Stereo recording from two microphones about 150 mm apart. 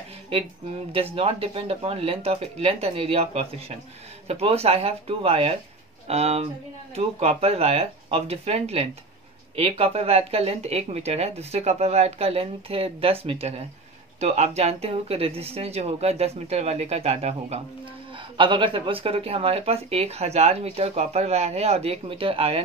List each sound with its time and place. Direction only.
0.9 s speech: 40° right (ahead or behind)
18.1 s speech: 35° right (ahead or behind)